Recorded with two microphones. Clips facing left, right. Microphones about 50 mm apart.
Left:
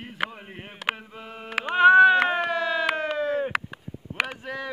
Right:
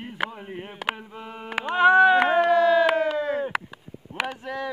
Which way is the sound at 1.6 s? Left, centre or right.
Centre.